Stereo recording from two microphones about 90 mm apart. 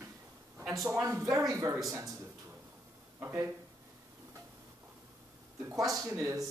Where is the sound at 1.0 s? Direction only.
35° right (ahead or behind).